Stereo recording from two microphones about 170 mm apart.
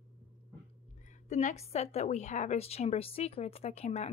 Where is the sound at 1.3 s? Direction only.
40° left (ahead or behind).